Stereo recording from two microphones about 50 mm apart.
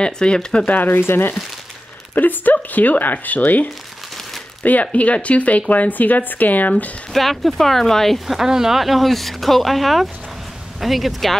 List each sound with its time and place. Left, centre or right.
0.0 s speech: centre
0.7 s speech: left
2.1 s a woman's voice: left
7.1 s speech: centre
8.3 s speech: centre